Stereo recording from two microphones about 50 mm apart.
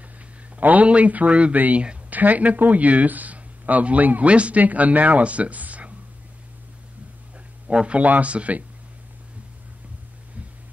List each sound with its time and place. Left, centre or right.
0.6 s speech: right
7.7 s speech: right